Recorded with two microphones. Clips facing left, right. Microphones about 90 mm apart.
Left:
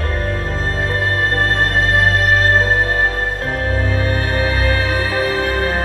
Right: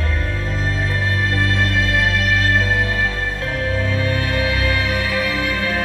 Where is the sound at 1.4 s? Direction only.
45° left (ahead or behind).